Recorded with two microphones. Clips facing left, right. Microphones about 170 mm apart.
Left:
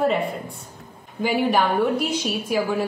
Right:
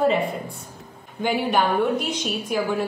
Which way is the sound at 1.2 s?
Centre (ahead or behind).